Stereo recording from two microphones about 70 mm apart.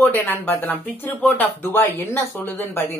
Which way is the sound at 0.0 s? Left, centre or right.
Left.